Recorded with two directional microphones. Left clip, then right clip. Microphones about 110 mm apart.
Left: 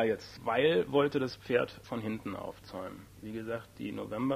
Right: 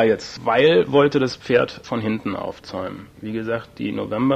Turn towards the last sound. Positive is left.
turn(degrees=-35)  # may be behind; listen again after turning